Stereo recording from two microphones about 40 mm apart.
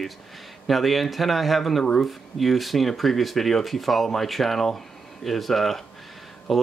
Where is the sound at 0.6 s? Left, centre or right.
Centre.